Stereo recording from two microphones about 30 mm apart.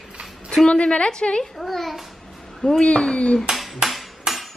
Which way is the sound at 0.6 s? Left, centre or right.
Left.